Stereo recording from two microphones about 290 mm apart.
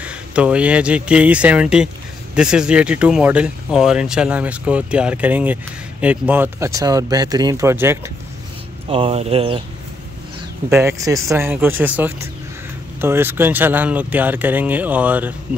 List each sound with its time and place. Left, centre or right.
0.0 s speech: centre
8.8 s speech: centre
10.7 s speech: centre